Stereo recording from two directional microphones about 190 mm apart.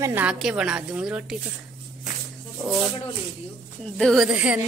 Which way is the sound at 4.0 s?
Centre (ahead or behind).